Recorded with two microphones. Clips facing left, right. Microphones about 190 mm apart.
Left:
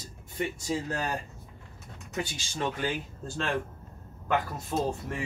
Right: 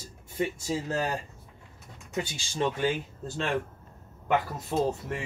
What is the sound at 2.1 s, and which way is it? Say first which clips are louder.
Speech: right 1 dB; 20° right (ahead or behind).